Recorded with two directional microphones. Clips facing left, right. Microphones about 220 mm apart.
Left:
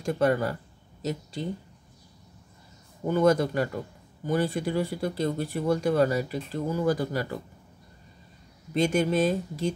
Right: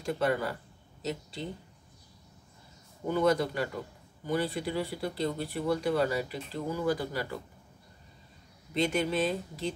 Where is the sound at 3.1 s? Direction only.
45° left (ahead or behind).